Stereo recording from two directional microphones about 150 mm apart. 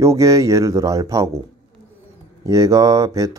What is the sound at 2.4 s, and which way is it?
Speech, 20° right (ahead or behind).